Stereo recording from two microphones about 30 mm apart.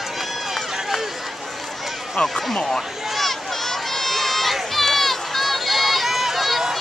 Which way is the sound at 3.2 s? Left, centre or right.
Centre.